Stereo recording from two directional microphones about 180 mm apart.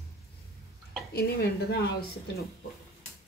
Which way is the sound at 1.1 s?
60° left (ahead or behind).